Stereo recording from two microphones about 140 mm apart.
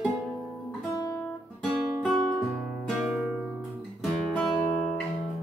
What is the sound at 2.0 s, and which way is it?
Music, 5° right (ahead or behind).